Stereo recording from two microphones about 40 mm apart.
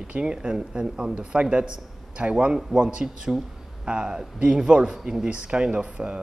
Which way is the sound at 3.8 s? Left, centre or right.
Centre.